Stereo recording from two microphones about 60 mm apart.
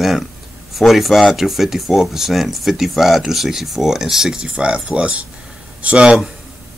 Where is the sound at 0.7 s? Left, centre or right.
Centre.